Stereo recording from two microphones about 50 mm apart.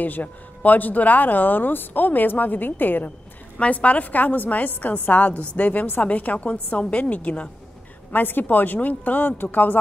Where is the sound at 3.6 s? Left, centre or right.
Left.